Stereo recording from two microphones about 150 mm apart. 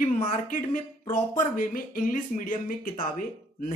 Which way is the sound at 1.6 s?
65° left (ahead or behind).